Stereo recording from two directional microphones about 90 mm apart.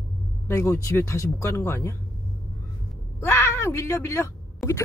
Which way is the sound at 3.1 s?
30° left (ahead or behind).